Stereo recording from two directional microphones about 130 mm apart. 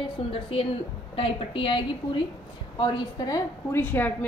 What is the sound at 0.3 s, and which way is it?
A woman's voice, 45° left (ahead or behind).